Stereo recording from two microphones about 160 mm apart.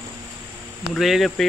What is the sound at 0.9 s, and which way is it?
Speech, centre (ahead or behind).